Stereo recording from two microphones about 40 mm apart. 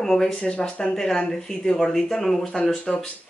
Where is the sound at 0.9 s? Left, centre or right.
Centre.